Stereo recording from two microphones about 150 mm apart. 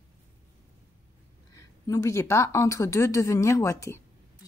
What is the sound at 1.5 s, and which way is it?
Speech, 20° left (ahead or behind).